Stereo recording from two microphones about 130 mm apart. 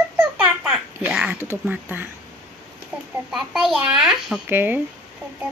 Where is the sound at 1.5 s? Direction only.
15° right (ahead or behind).